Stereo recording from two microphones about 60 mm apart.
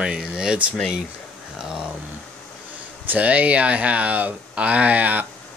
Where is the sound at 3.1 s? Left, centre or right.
Right.